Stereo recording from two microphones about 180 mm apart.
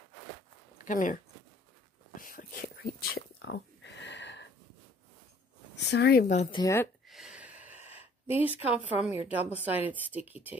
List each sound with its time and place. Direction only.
0.8 s speech: 45° left (ahead or behind)
2.1 s a sound: 50° left (ahead or behind); by 4.5 s 80° left
5.9 s speech: 65° left (ahead or behind)
6.2 s speech: 45° left (ahead or behind)
6.5 s speech: 15° left (ahead or behind)
7.1 s a sound: centre (ahead or behind)
7.8 s a woman's voice: 10° right (ahead or behind)